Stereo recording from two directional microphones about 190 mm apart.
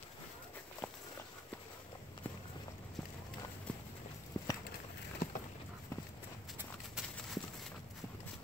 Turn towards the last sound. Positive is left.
turn(degrees=-5)  # may be behind; listen again after turning